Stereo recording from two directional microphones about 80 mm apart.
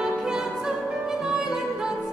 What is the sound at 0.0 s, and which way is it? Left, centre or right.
Music, centre.